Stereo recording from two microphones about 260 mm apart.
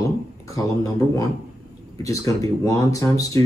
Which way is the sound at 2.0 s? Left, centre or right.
Centre.